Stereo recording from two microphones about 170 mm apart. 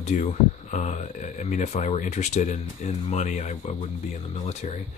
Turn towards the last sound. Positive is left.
turn(degrees=40)  # may be behind; listen again after turning